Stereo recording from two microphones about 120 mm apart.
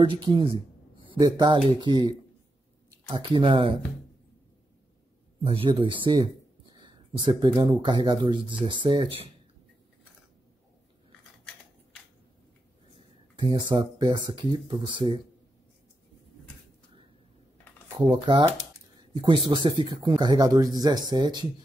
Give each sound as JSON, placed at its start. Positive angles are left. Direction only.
{"t": 0.0, "sound": "speech", "side_deg": -45}
{"t": 5.4, "sound": "speech", "side_deg": -50}
{"t": 13.4, "sound": "speech", "side_deg": -40}
{"t": 18.1, "sound": "speech", "side_deg": -40}